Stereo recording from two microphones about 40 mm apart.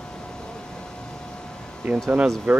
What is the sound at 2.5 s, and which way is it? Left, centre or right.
Speech, right.